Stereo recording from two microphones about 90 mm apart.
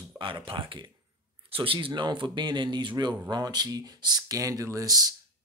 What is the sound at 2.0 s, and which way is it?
Speech, 65° right (ahead or behind).